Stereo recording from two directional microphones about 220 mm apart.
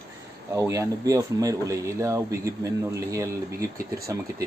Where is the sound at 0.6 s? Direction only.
15° right (ahead or behind).